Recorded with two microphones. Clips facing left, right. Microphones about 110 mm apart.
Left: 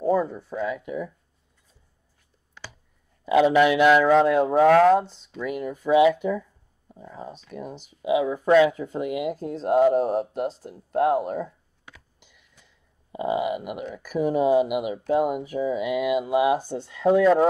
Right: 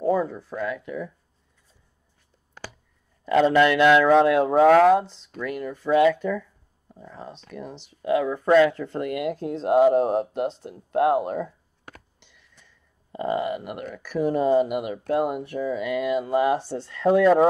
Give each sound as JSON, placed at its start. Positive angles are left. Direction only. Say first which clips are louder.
{"t": 0.0, "sound": "speech", "louder": "even", "side_deg": 0}
{"t": 2.6, "sound": "clicking", "louder": "right 3 dB", "side_deg": -45}
{"t": 3.3, "sound": "speech", "louder": "even", "side_deg": 10}
{"t": 5.4, "sound": "speech", "louder": "left 1 dB", "side_deg": 5}
{"t": 7.5, "sound": "speech", "louder": "left 1 dB", "side_deg": 5}
{"t": 13.1, "sound": "speech", "louder": "left 1 dB", "side_deg": 10}